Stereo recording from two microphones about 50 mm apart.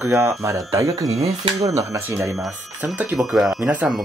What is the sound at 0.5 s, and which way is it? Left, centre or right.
Speech, right.